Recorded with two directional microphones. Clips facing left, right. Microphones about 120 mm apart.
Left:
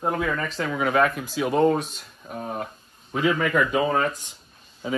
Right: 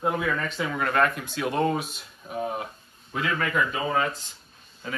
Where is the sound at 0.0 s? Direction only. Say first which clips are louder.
Left 1 dB; centre (ahead or behind).